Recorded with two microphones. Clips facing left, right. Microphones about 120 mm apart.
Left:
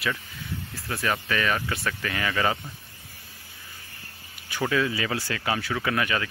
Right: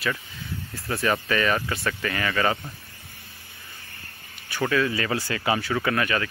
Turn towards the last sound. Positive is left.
turn(degrees=10)  # may be behind; listen again after turning